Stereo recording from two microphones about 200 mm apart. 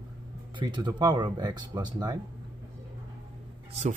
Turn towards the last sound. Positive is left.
turn(degrees=-35)  # may be behind; listen again after turning